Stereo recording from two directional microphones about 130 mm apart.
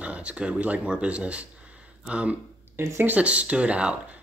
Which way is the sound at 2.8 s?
15° right (ahead or behind).